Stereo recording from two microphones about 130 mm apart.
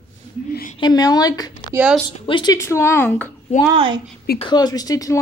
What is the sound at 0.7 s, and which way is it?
A woman's voice, 30° left (ahead or behind).